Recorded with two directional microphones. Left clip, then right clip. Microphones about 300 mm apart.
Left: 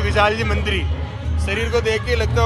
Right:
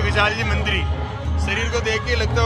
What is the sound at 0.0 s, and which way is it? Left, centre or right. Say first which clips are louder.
Speech: left 2 dB; centre.